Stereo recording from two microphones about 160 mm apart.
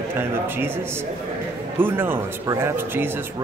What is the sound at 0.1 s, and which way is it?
Speech, 15° right (ahead or behind).